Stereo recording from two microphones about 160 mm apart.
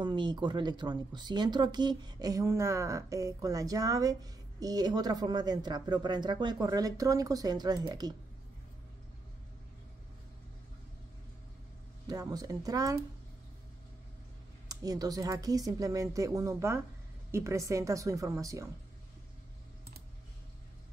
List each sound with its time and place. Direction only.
0.0 s speech: 30° right (ahead or behind)
12.1 s speech: 25° right (ahead or behind)
14.7 s speech: 25° right (ahead or behind)